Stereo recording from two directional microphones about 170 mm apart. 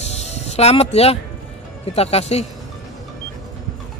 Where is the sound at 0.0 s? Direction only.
40° left (ahead or behind).